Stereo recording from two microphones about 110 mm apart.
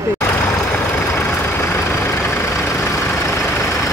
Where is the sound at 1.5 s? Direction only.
25° left (ahead or behind).